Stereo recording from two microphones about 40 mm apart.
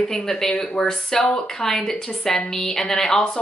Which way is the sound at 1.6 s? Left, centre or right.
Centre.